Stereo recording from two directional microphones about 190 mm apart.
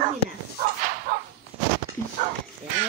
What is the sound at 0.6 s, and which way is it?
Dog, 45° right (ahead or behind).